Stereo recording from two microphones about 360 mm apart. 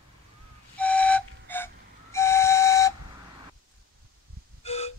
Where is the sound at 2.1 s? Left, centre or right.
Centre.